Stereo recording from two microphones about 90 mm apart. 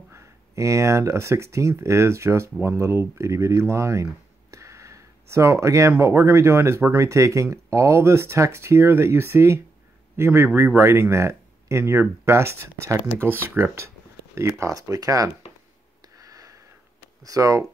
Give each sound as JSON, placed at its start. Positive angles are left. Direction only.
{"t": 0.1, "sound": "speech", "side_deg": -35}
{"t": 16.2, "sound": "a sound", "side_deg": -40}
{"t": 17.2, "sound": "speech", "side_deg": -40}